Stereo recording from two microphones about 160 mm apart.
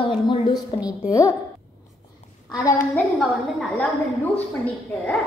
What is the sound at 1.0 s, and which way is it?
Speech, 20° left (ahead or behind).